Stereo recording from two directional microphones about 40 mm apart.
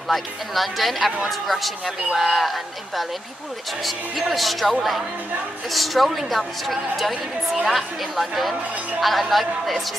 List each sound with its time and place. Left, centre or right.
0.1 s a woman's voice: centre
2.1 s a woman's voice: centre